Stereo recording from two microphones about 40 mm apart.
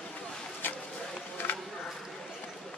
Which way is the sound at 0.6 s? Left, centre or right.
Left.